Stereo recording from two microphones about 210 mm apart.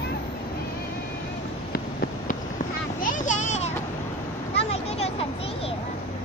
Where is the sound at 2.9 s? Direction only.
40° left (ahead or behind).